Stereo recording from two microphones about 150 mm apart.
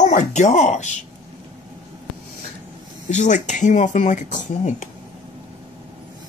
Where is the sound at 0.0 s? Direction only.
50° left (ahead or behind).